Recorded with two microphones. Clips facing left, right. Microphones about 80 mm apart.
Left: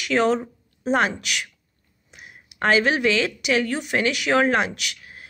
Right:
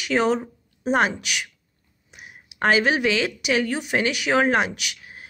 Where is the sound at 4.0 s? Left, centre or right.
Centre.